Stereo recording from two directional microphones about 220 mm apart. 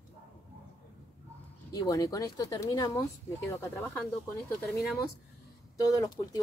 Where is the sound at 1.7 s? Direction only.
15° left (ahead or behind).